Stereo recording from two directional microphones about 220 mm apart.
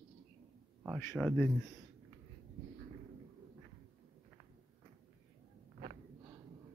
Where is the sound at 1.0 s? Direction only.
10° left (ahead or behind).